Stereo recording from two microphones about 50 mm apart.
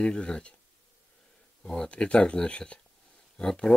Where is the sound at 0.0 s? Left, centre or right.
Centre.